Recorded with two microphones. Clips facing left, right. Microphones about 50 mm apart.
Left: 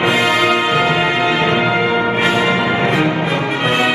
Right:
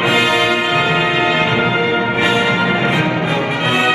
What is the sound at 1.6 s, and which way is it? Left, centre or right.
Change ringing, left.